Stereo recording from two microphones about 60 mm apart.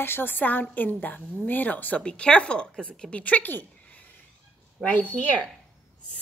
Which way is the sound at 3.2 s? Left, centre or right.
Left.